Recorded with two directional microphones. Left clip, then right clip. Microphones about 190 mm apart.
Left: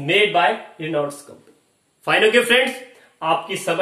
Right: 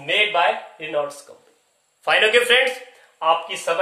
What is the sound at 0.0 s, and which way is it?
Speech, 20° right (ahead or behind).